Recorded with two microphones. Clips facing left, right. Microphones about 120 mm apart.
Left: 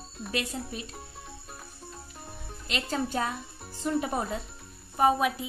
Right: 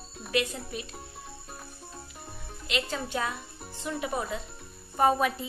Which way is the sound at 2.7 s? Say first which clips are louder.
Left 1 dB; 40° left (ahead or behind).